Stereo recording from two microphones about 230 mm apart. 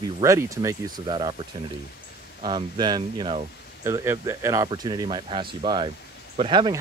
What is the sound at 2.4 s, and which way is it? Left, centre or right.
Speech, centre.